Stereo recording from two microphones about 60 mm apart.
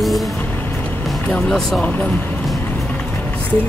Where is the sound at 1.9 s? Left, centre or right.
Left.